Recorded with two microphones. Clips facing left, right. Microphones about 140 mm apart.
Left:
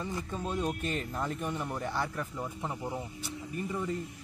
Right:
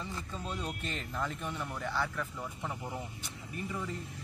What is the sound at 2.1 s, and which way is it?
Speech, 25° left (ahead or behind).